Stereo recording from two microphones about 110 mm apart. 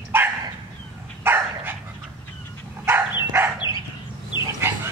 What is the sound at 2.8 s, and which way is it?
Bow-wow, 20° right (ahead or behind).